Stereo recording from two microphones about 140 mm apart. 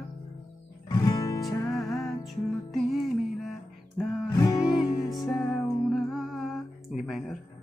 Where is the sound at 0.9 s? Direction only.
25° left (ahead or behind).